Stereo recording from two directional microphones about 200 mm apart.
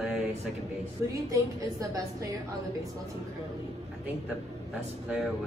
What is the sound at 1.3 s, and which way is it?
A woman's voice, 15° right (ahead or behind).